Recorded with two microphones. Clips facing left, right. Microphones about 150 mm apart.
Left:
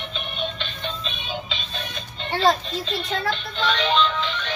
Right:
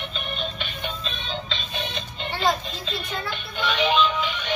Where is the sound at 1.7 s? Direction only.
20° right (ahead or behind).